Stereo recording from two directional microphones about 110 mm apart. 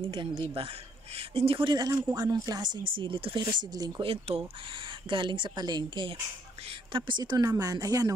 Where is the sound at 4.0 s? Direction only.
55° right (ahead or behind).